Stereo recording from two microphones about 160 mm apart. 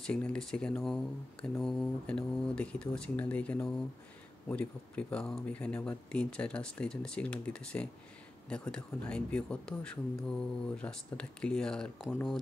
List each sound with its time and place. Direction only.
0.0 s speech: 5° left (ahead or behind)